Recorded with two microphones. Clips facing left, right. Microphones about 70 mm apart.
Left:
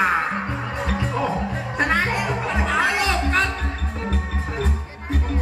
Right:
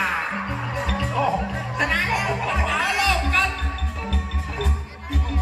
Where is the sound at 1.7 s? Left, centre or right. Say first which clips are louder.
Left 2 dB; left.